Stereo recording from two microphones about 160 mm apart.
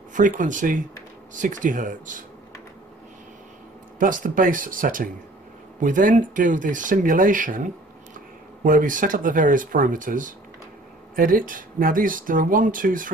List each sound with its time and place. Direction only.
0.1 s speech: 55° right (ahead or behind)
4.0 s speech: 60° right (ahead or behind)
8.6 s speech: 55° right (ahead or behind)